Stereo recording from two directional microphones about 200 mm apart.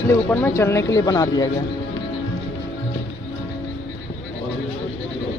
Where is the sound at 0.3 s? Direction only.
10° left (ahead or behind).